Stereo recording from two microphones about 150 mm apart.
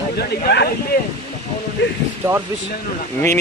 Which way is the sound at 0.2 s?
90° left.